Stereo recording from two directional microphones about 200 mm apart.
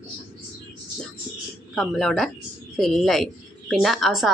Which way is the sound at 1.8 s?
Centre (ahead or behind).